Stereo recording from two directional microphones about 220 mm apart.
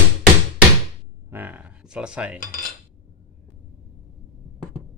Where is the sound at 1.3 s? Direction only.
10° right (ahead or behind).